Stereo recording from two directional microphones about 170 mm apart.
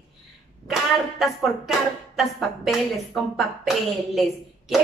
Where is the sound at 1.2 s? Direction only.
Centre (ahead or behind).